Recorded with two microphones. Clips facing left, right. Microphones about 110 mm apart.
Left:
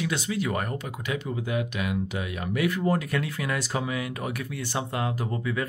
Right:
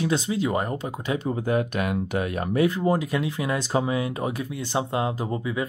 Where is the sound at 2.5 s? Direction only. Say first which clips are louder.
Right 4 dB; 30° right (ahead or behind).